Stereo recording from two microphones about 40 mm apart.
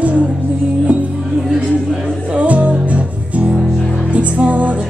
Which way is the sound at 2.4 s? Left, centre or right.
Right.